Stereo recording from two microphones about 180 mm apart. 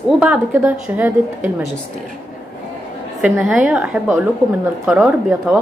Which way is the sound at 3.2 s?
5° right (ahead or behind).